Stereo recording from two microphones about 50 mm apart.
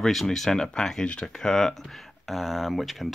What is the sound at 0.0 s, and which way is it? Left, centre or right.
Speech, centre.